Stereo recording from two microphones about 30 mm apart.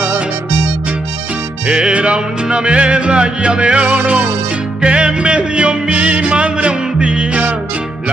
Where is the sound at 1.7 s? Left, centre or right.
Right.